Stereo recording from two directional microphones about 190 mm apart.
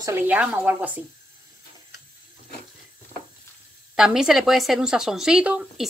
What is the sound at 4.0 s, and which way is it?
Speech, 5° right (ahead or behind).